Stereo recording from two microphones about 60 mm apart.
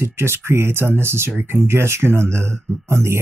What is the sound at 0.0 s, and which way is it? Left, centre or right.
Speech, right.